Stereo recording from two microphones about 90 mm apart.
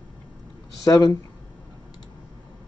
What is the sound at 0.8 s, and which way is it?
Speech, 40° left (ahead or behind).